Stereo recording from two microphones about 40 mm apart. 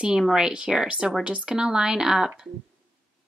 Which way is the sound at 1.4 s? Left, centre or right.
Centre.